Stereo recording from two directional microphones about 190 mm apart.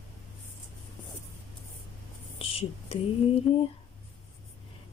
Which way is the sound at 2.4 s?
30° left (ahead or behind).